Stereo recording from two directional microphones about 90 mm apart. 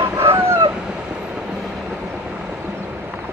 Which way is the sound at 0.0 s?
30° right (ahead or behind).